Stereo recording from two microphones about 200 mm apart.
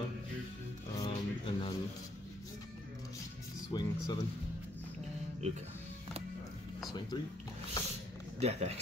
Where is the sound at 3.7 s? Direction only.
20° left (ahead or behind).